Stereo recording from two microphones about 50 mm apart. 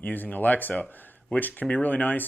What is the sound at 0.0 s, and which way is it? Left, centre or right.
Speech, left.